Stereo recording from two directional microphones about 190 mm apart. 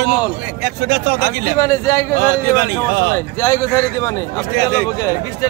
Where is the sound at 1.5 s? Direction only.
15° left (ahead or behind).